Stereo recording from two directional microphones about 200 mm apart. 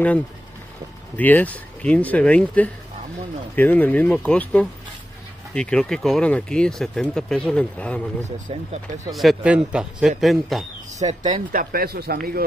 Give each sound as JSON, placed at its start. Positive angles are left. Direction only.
{"t": 1.1, "sound": "speech", "side_deg": 10}
{"t": 8.2, "sound": "speech", "side_deg": -35}
{"t": 9.1, "sound": "speech", "side_deg": 0}
{"t": 11.0, "sound": "speech", "side_deg": -30}
{"t": 11.5, "sound": "speech", "side_deg": -50}